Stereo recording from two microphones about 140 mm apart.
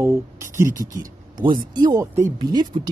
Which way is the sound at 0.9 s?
30° right (ahead or behind).